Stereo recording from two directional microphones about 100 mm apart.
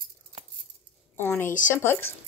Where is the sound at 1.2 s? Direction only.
20° left (ahead or behind).